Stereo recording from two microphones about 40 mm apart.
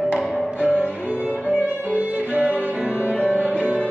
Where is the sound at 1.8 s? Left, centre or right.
Right.